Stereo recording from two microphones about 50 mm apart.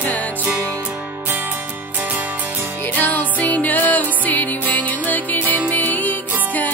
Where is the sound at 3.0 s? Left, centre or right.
Left.